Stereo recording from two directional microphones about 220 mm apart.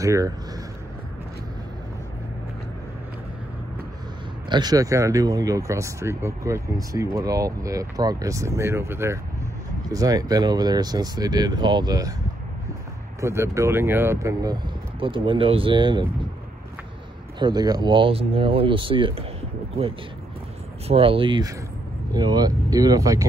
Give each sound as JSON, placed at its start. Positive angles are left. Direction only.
{"t": 0.0, "sound": "speech", "side_deg": -15}
{"t": 4.5, "sound": "speech", "side_deg": -20}
{"t": 13.2, "sound": "speech", "side_deg": -10}
{"t": 17.4, "sound": "speech", "side_deg": -20}
{"t": 20.8, "sound": "speech", "side_deg": -25}